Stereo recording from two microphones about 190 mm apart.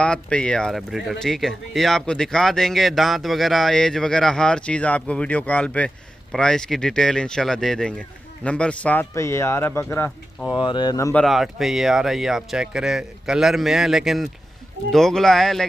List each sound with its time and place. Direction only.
0.0 s speech: 5° left (ahead or behind)
10.5 s speech: 25° left (ahead or behind)
11.2 s speech: centre (ahead or behind)